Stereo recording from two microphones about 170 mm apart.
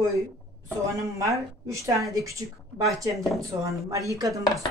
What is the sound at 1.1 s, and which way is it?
A woman's voice, 20° right (ahead or behind).